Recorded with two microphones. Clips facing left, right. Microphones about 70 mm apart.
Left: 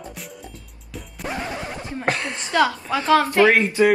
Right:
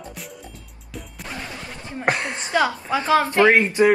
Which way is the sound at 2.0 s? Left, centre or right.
Right.